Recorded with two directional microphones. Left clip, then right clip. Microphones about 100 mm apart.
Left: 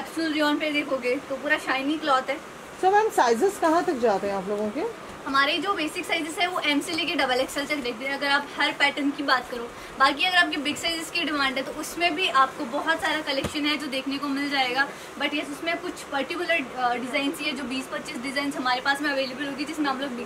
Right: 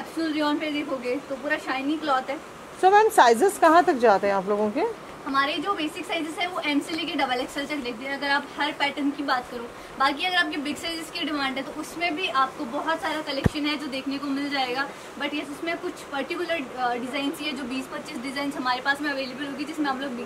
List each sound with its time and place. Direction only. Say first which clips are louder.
0.2 s a woman's voice: left 1 dB; 5° left (ahead or behind)
2.8 s a woman's voice: right 4 dB; 50° right (ahead or behind)
5.3 s a woman's voice: left 2 dB; 5° left (ahead or behind)